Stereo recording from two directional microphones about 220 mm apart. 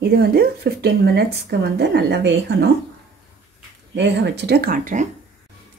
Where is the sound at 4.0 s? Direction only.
50° right (ahead or behind); by 5.1 s 35° right (ahead or behind).